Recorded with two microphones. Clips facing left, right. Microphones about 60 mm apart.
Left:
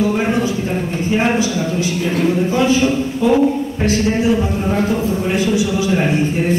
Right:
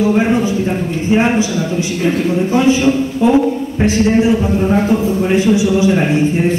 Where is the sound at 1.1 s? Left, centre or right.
Centre.